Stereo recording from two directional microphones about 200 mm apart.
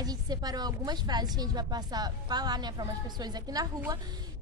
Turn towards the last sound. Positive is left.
turn(degrees=-20)  # may be behind; listen again after turning